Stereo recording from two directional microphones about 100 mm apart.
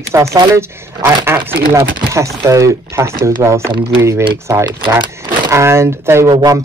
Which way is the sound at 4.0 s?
25° right (ahead or behind).